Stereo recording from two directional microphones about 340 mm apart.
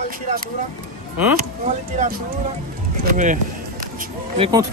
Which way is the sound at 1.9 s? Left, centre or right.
Right.